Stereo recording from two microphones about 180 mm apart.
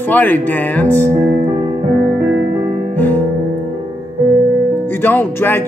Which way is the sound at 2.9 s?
10° left (ahead or behind).